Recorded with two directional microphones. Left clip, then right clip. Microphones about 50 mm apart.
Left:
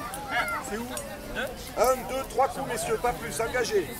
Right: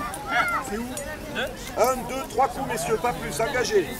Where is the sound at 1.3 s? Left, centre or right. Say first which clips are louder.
Right 3 dB; centre.